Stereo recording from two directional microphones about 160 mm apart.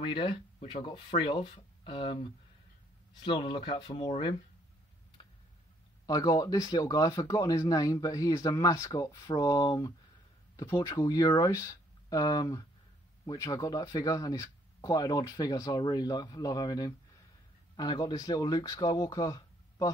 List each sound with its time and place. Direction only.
0.0 s speech: 30° left (ahead or behind)
5.2 s tick-tock: 30° left (ahead or behind)
6.0 s speech: 20° left (ahead or behind)